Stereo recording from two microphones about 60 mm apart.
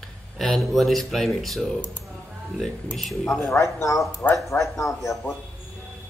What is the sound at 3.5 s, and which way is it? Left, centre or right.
A man's voice, left.